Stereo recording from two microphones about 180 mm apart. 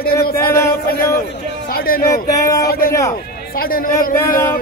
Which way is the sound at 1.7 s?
55° left (ahead or behind).